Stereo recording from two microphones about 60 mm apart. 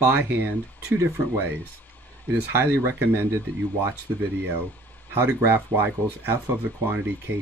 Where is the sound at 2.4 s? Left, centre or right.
Right.